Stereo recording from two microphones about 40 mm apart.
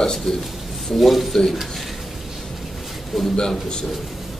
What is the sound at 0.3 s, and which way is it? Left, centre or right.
A man's voice, centre.